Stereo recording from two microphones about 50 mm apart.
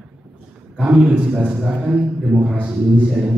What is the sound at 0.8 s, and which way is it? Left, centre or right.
A man's voice, right.